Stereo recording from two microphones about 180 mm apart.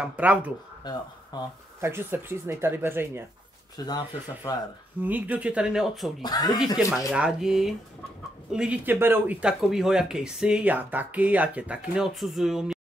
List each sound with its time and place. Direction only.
0.0 s speech: 5° right (ahead or behind)
1.3 s speech: 20° left (ahead or behind)
1.8 s speech: 15° right (ahead or behind)
3.7 s speech: 20° left (ahead or behind)
5.0 s speech: 10° right (ahead or behind)
6.2 s speech: 20° left (ahead or behind)
7.1 s speech: 5° right (ahead or behind)